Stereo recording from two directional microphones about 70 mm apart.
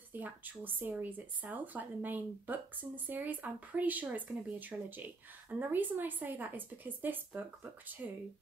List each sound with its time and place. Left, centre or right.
0.1 s speech: right